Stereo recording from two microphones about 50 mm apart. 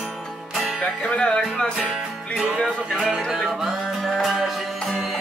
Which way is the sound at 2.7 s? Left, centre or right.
Centre.